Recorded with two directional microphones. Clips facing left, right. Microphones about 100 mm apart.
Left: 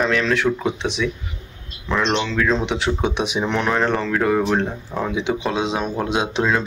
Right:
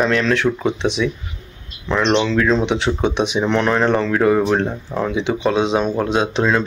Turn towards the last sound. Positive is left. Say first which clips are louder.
# right 3 dB
turn(degrees=5)  # may be behind; listen again after turning